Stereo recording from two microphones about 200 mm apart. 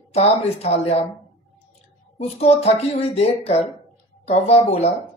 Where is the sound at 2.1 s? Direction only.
30° left (ahead or behind).